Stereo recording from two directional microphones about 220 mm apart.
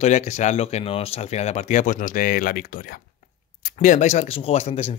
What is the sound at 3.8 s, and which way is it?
Speech, 35° left (ahead or behind).